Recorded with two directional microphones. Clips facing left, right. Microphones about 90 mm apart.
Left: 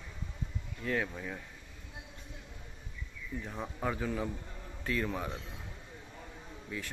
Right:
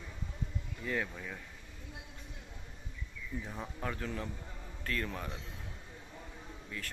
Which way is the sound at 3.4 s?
Centre (ahead or behind).